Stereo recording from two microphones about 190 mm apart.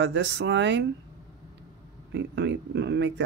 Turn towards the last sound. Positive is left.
turn(degrees=-70)  # may be behind; listen again after turning